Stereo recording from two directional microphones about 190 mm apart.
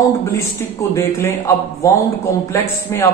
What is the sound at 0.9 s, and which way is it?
Speech, 15° left (ahead or behind).